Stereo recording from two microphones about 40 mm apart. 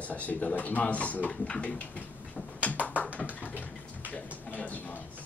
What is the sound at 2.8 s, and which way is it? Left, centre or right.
Tap, left.